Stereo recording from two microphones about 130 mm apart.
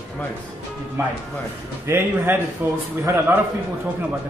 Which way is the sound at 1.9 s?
15° right (ahead or behind).